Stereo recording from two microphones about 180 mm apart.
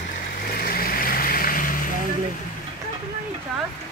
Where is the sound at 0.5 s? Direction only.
55° left (ahead or behind).